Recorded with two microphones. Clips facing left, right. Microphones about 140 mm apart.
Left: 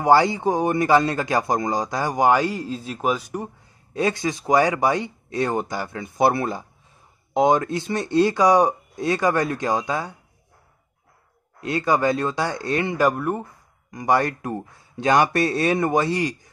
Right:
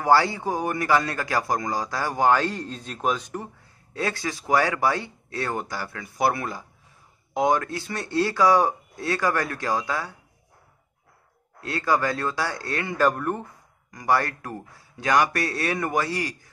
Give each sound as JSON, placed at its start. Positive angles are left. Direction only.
{"t": 0.0, "sound": "a man's voice", "side_deg": 20}
{"t": 3.9, "sound": "a man's voice", "side_deg": 20}
{"t": 11.6, "sound": "a man's voice", "side_deg": 20}
{"t": 13.9, "sound": "a man's voice", "side_deg": 20}